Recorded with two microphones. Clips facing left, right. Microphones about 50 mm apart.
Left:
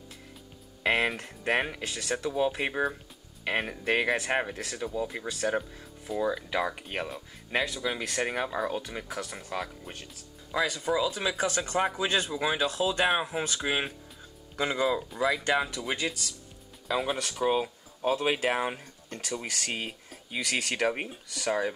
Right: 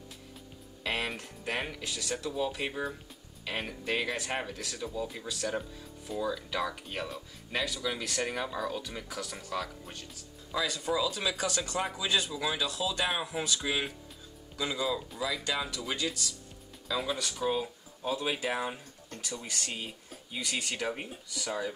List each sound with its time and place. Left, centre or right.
0.8 s speech: left
4.5 s speech: left
19.4 s speech: left
21.0 s speech: left
21.5 s speech: left